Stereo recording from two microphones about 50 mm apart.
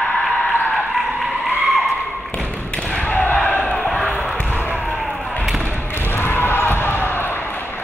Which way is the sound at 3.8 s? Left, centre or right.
Centre.